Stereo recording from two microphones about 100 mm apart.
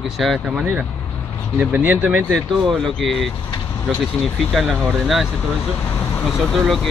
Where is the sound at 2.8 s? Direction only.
Centre (ahead or behind).